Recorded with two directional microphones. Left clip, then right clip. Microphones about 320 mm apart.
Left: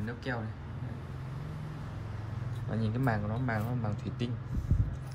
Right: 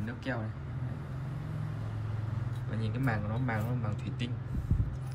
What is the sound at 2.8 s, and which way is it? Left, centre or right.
Speech, centre.